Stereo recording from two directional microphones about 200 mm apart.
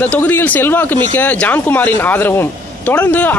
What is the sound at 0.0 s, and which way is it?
Speech, 10° left (ahead or behind).